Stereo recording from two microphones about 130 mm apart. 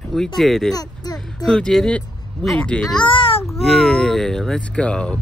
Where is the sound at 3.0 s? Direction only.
40° left (ahead or behind).